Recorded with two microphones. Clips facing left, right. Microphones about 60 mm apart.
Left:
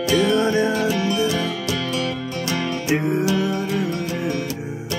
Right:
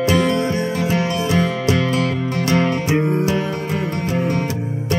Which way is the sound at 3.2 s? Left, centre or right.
Right.